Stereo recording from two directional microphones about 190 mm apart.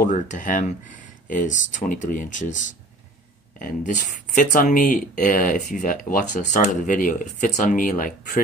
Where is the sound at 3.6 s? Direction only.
40° left (ahead or behind).